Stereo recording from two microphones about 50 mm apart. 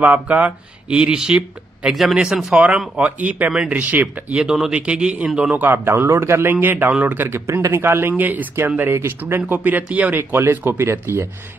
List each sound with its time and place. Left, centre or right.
0.0 s speech: right
0.8 s speech: centre
1.9 s speech: centre
2.5 s a man's voice: right
4.3 s a man's voice: right
5.7 s a man's voice: right
6.1 s speech: right
6.4 s a man's voice: right
7.4 s speech: right
8.2 s a man's voice: right
9.2 s speech: right
9.8 s a man's voice: right
10.1 s speech: right